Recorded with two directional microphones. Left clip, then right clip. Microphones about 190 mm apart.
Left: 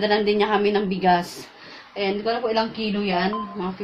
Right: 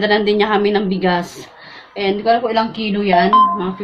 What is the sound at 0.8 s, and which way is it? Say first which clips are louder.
Speech: right 2 dB; 15° left (ahead or behind).